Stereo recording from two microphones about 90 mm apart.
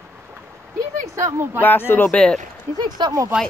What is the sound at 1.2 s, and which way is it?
Speech, 35° right (ahead or behind).